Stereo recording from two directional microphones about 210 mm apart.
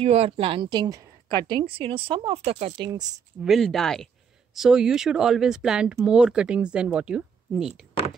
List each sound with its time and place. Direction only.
0.0 s a woman's voice: 30° right (ahead or behind)
3.4 s speech: centre (ahead or behind)